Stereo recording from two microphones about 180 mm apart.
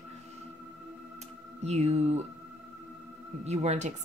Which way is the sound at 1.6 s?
35° right (ahead or behind).